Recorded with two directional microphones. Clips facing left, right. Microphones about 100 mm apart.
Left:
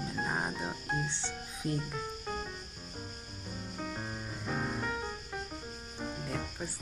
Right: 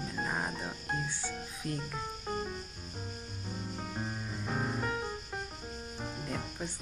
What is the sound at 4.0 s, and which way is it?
Music, 5° right (ahead or behind).